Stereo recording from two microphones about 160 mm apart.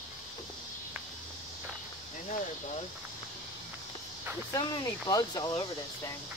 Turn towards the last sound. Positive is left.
turn(degrees=25)  # may be behind; listen again after turning